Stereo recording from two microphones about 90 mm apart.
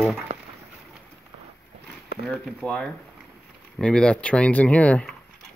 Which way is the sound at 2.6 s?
10° left (ahead or behind).